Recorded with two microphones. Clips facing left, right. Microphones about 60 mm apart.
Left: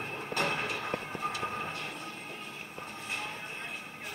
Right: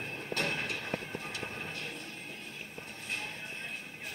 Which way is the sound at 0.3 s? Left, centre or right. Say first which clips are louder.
Left 3 dB; left.